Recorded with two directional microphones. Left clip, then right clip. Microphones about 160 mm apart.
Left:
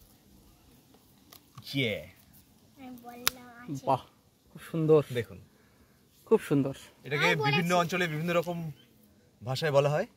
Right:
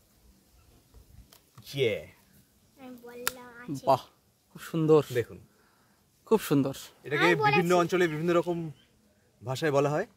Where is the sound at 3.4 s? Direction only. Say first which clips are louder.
Right 3 dB; 55° right (ahead or behind).